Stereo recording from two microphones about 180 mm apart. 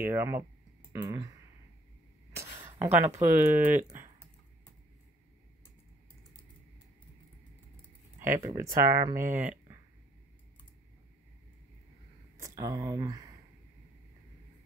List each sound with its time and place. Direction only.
0.0 s speech: 15° right (ahead or behind)
2.3 s speech: 15° right (ahead or behind)
8.2 s speech: 15° right (ahead or behind)
9.1 s speech: 50° right (ahead or behind)
12.4 s speech: 15° right (ahead or behind)